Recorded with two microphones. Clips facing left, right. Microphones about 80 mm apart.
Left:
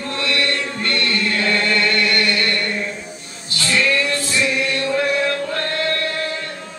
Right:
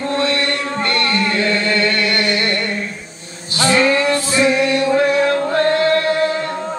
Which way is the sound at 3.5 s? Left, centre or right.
Right.